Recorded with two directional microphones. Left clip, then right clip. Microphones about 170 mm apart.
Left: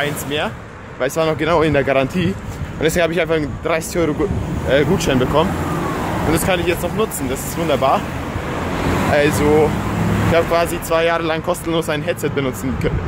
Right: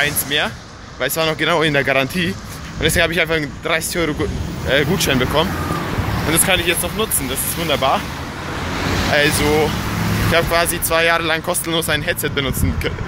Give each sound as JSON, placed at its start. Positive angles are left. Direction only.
{"t": 0.0, "sound": "speech", "side_deg": 5}
{"t": 9.1, "sound": "speech", "side_deg": 10}